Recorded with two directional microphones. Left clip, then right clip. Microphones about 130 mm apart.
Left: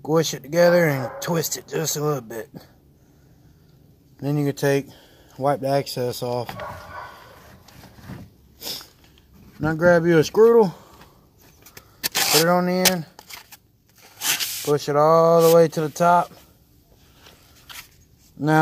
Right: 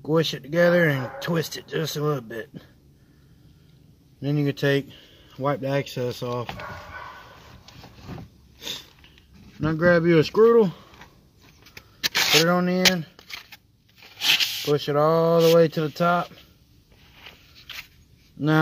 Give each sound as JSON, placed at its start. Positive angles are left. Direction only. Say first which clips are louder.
{"t": 0.0, "sound": "speech", "louder": "left 2 dB", "side_deg": -5}
{"t": 4.2, "sound": "speech", "louder": "left 2 dB", "side_deg": -5}
{"t": 9.6, "sound": "speech", "louder": "left 2 dB", "side_deg": -25}
{"t": 10.0, "sound": "speech", "louder": "left 2 dB", "side_deg": 0}
{"t": 11.7, "sound": "a sound", "louder": "right 2 dB", "side_deg": 5}
{"t": 12.4, "sound": "speech", "louder": "left 3 dB", "side_deg": -10}
{"t": 12.8, "sound": "a sound", "louder": "even", "side_deg": 0}
{"t": 14.0, "sound": "tearing", "louder": "right 4 dB", "side_deg": 5}
{"t": 14.8, "sound": "speech", "louder": "left 5 dB", "side_deg": -10}
{"t": 18.4, "sound": "speech", "louder": "left 2 dB", "side_deg": -10}